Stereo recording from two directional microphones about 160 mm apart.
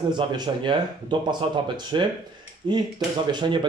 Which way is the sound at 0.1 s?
30° right (ahead or behind).